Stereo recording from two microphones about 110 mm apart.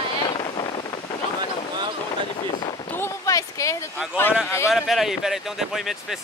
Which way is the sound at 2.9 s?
25° left (ahead or behind).